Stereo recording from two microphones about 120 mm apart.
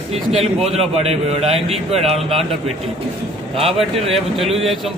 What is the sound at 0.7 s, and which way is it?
A man's voice, 60° right (ahead or behind).